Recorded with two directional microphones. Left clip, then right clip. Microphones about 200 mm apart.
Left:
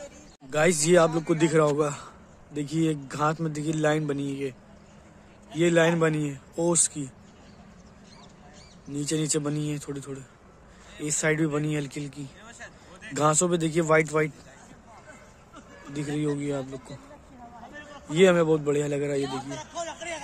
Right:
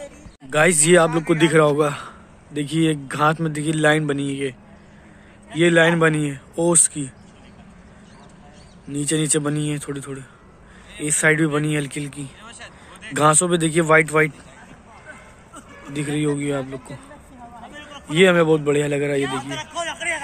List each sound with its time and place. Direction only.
0.5 s a man's voice: centre (ahead or behind)
5.6 s a man's voice: 5° left (ahead or behind)
8.8 s a man's voice: 5° left (ahead or behind)
12.4 s vehicle: 55° left (ahead or behind)
13.1 s a man's voice: 5° left (ahead or behind)
15.9 s a man's voice: 5° left (ahead or behind)
17.6 s a sound: 15° right (ahead or behind)
18.1 s a man's voice: 5° left (ahead or behind)
19.8 s a sound: 25° right (ahead or behind)